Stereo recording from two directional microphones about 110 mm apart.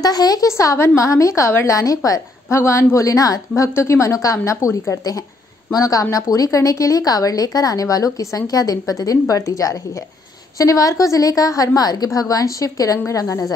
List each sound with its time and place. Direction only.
0.0 s a woman's voice: 35° left (ahead or behind)